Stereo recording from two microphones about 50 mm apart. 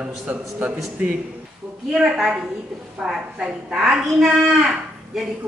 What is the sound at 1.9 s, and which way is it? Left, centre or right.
A woman's voice, centre.